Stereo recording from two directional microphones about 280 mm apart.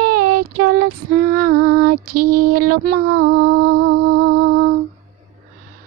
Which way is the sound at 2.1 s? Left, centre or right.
Right.